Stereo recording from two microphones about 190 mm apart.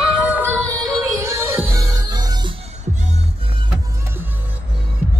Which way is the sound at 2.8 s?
35° right (ahead or behind).